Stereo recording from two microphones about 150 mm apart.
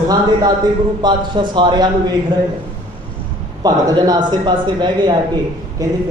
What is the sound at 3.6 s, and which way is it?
Speech, 25° right (ahead or behind).